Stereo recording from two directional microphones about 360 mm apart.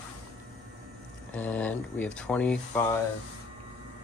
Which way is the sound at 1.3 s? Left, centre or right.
Centre.